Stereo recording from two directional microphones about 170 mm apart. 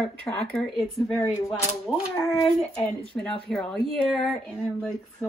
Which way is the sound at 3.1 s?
5° left (ahead or behind).